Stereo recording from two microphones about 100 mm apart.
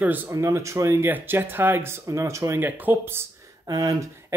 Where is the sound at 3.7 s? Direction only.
35° right (ahead or behind).